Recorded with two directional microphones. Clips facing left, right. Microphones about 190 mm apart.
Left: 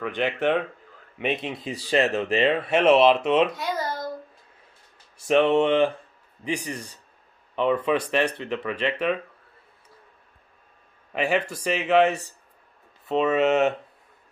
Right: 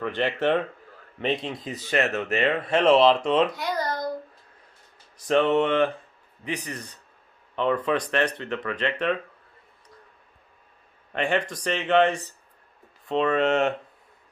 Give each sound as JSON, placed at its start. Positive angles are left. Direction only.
{"t": 0.0, "sound": "speech", "side_deg": 10}
{"t": 2.3, "sound": "speech", "side_deg": 15}
{"t": 3.5, "sound": "babbling", "side_deg": 0}
{"t": 5.2, "sound": "speech", "side_deg": 25}
{"t": 6.5, "sound": "speech", "side_deg": 10}
{"t": 11.1, "sound": "speech", "side_deg": 5}